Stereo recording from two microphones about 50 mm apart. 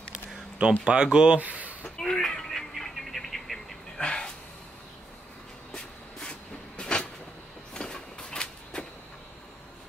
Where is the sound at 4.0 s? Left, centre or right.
Centre.